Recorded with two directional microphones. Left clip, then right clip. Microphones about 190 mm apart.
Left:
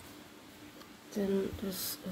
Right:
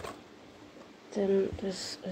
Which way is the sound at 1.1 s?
15° left (ahead or behind).